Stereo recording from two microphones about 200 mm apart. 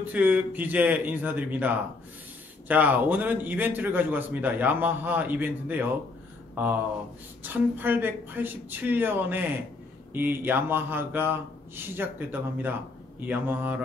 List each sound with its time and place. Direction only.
0.0 s a man's voice: 10° right (ahead or behind)